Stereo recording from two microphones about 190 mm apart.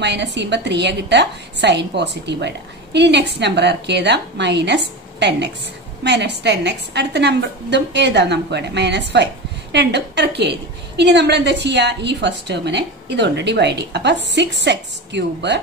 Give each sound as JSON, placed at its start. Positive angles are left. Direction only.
{"t": 0.0, "sound": "a woman's voice", "side_deg": -65}